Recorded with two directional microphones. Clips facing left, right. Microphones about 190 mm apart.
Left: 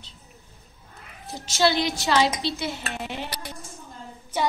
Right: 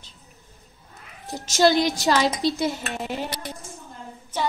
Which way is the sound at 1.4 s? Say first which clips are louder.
Right 4 dB; 40° right (ahead or behind).